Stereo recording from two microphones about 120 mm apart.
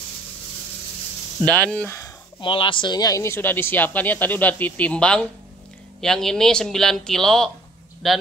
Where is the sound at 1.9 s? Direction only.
25° left (ahead or behind).